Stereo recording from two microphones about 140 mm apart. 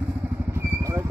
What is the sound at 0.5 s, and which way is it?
Vehicle, 20° right (ahead or behind).